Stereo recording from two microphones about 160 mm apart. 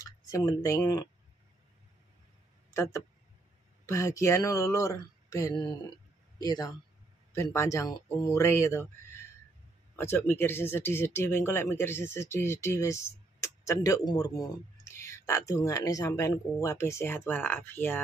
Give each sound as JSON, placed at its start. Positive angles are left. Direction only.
{"t": 0.0, "sound": "speech", "side_deg": 20}
{"t": 2.7, "sound": "a man's voice", "side_deg": 20}